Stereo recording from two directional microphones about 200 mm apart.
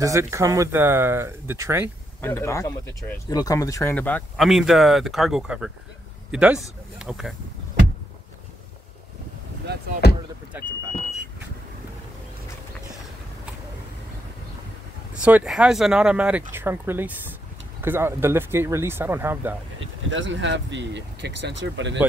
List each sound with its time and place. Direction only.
0.0 s speech: 15° right (ahead or behind)
2.2 s speech: 15° left (ahead or behind); by 7.3 s centre (ahead or behind)
10.0 s speech: 55° left (ahead or behind)
10.5 s speech: 10° right (ahead or behind)
15.2 s speech: 5° right (ahead or behind)
20.1 s speech: 65° right (ahead or behind)